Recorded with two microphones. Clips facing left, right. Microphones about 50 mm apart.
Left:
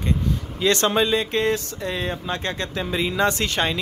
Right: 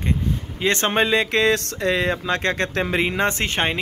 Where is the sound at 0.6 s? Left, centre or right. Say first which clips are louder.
Left 1 dB; right.